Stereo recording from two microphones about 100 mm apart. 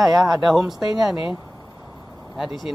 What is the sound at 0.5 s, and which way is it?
Speech, 5° right (ahead or behind).